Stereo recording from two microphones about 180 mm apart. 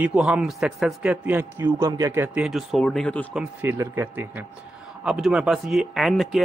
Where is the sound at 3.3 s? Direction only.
10° right (ahead or behind).